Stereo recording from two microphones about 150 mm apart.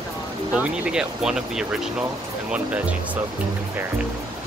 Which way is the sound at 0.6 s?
5° right (ahead or behind).